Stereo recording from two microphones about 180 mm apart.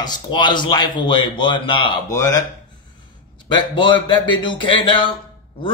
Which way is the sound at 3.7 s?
25° left (ahead or behind).